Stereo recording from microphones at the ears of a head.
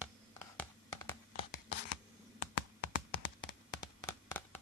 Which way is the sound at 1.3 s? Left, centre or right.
Left.